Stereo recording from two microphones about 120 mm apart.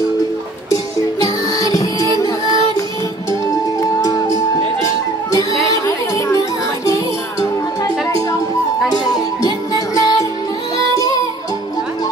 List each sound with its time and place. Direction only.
1.2 s music: 30° left (ahead or behind)
4.0 s music: 30° left (ahead or behind)
9.4 s music: 30° left (ahead or behind)